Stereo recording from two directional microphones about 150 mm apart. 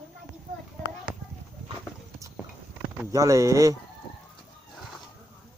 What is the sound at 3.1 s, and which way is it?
Speech, 20° right (ahead or behind).